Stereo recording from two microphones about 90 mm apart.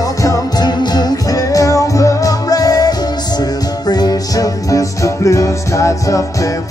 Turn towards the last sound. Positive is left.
turn(degrees=35)  # may be behind; listen again after turning